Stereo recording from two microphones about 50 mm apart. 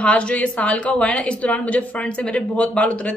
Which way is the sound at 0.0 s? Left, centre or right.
Left.